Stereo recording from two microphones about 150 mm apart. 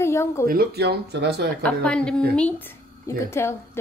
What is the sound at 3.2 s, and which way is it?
Speech, 15° left (ahead or behind).